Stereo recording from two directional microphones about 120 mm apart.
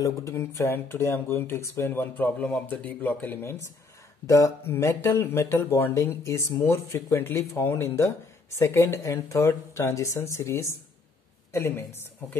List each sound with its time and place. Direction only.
0.0 s speech: 25° left (ahead or behind)